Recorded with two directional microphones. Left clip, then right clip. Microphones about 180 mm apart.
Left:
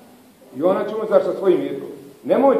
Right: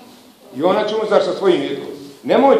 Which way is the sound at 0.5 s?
5° right (ahead or behind).